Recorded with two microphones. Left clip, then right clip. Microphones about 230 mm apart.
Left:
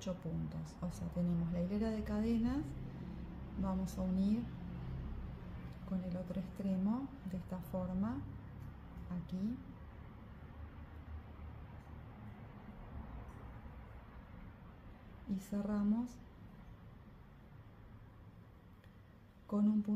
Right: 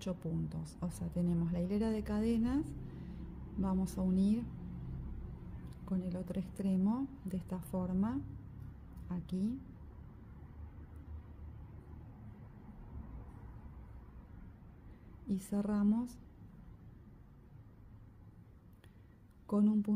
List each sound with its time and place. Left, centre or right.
0.0 s speech: right
3.6 s speech: right
6.0 s a woman's voice: right
15.2 s speech: right
19.4 s speech: right